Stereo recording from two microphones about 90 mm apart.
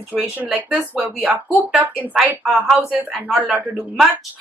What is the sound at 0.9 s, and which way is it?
Speech, 20° right (ahead or behind).